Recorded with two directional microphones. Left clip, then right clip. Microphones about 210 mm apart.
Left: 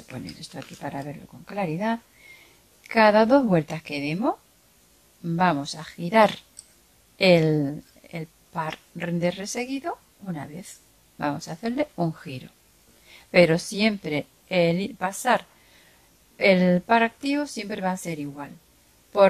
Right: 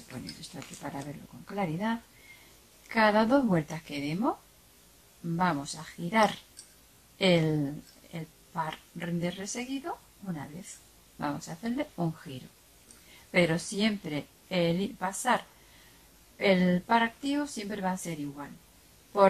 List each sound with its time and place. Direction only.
0.1 s speech: 45° left (ahead or behind)